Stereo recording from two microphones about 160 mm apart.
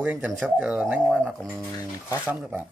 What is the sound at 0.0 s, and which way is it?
Speech, 10° right (ahead or behind).